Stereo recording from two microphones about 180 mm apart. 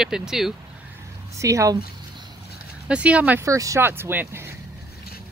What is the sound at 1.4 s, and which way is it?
Speech, 15° right (ahead or behind).